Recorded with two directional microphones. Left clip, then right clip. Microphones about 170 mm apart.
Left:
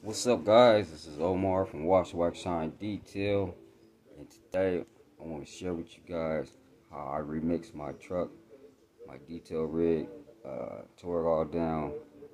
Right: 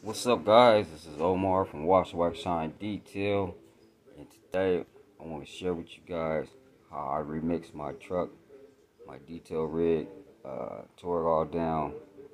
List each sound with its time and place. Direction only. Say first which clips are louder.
0.1 s speech: right 1 dB; 15° left (ahead or behind)